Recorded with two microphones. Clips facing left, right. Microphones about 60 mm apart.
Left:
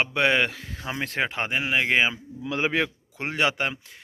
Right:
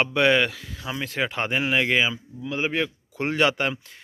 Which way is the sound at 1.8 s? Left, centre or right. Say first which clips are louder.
Even; left.